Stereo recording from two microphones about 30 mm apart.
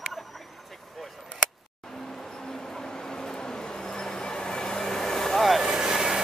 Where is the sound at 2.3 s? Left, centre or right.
Left.